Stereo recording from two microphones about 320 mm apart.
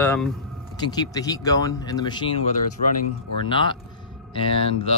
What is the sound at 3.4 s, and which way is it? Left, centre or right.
Speech, centre.